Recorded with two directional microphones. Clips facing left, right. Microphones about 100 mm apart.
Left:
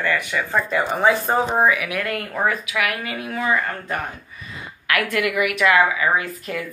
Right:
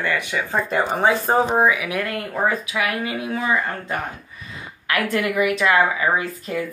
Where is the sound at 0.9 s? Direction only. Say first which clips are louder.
Left 1 dB; 30° right (ahead or behind).